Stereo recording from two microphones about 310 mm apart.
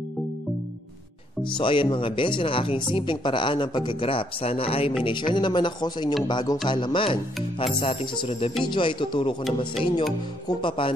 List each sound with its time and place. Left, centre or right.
1.6 s speech: centre